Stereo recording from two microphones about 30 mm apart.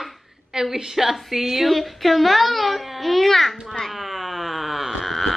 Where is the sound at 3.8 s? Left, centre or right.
Centre.